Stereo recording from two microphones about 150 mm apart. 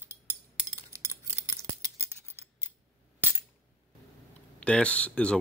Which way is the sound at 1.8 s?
20° right (ahead or behind).